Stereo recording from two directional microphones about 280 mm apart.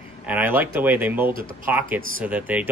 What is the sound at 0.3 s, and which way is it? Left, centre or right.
Speech, centre.